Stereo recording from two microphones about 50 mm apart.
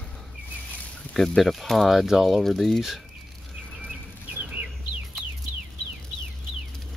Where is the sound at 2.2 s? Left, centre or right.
Centre.